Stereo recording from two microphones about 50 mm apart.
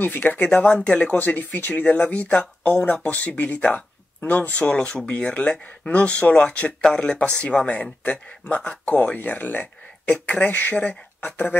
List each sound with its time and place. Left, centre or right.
0.0 s speech: left
0.5 s a man's voice: left
1.1 s a man's voice: left
2.6 s a man's voice: left